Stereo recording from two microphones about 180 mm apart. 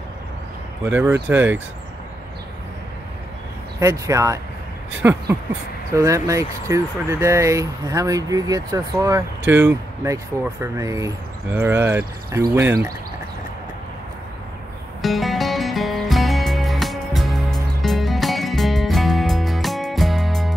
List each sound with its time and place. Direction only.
0.8 s speech: 10° right (ahead or behind)
3.8 s speech: 15° right (ahead or behind)
15.0 s music: centre (ahead or behind)